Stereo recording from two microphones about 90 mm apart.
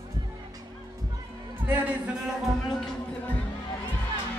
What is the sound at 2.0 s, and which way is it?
Speech, 5° right (ahead or behind).